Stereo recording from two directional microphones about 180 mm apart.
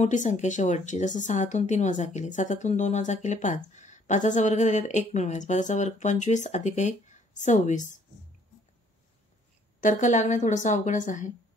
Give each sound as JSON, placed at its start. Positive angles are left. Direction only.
{"t": 0.0, "sound": "speech", "side_deg": 45}
{"t": 9.8, "sound": "a woman's voice", "side_deg": 45}